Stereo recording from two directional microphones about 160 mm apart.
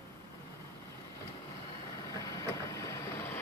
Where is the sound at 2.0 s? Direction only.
20° left (ahead or behind).